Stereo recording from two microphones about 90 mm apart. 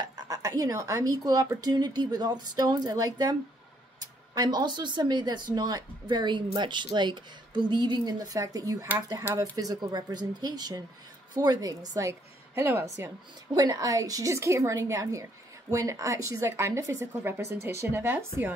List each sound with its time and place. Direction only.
0.2 s a woman's voice: 40° right (ahead or behind)
6.0 s a woman's voice: 60° right (ahead or behind); by 13.1 s 30° right (ahead or behind)
13.6 s speech: 40° right (ahead or behind); by 18.5 s 25° right (ahead or behind)